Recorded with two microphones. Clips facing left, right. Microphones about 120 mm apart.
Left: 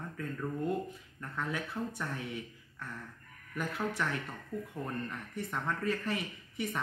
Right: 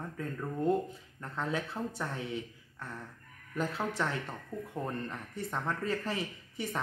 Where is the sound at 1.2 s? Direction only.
25° right (ahead or behind).